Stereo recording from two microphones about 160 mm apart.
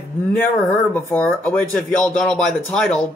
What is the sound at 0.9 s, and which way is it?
Speech, 10° left (ahead or behind).